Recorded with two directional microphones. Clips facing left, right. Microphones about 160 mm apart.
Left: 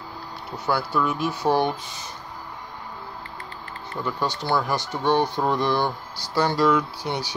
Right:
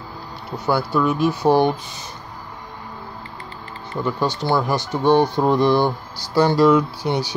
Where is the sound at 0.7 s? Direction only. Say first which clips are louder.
Right 5 dB; 15° right (ahead or behind).